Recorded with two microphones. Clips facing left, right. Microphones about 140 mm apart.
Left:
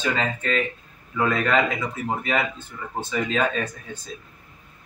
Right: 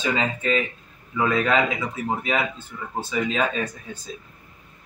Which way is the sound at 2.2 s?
5° right (ahead or behind).